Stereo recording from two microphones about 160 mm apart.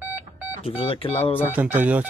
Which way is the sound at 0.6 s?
35° left (ahead or behind).